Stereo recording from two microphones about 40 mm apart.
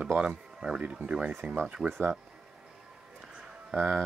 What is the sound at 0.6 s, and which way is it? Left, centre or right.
Speech, centre.